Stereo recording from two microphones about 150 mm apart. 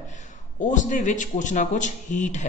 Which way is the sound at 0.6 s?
60° left (ahead or behind).